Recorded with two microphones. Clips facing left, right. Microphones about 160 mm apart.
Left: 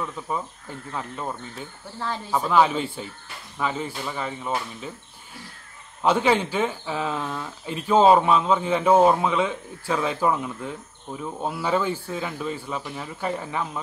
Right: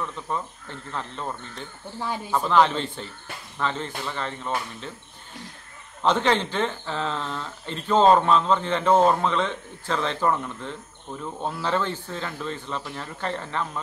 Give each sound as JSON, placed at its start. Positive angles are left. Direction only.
{"t": 0.0, "sound": "speech", "side_deg": 10}
{"t": 2.0, "sound": "speech", "side_deg": -15}
{"t": 2.3, "sound": "speech", "side_deg": 10}
{"t": 6.0, "sound": "speech", "side_deg": 10}